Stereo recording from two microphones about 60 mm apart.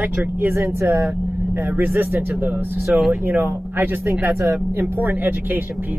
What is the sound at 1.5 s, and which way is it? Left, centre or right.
Speech, right.